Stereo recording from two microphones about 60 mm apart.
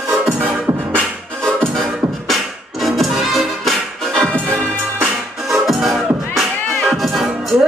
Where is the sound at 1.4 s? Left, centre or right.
Centre.